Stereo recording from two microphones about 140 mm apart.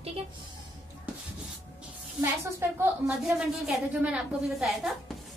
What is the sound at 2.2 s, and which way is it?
Speech, 15° right (ahead or behind).